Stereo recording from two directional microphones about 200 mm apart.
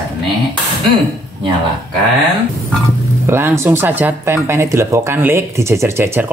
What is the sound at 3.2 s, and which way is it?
Speech, 10° right (ahead or behind).